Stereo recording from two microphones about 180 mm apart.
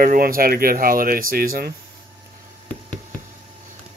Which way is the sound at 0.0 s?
50° right (ahead or behind).